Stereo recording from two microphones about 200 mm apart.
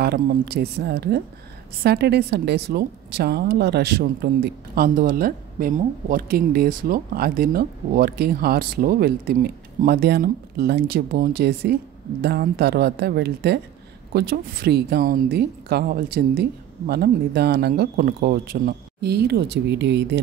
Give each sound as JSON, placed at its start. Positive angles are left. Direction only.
{"t": 0.0, "sound": "a woman's voice", "side_deg": -50}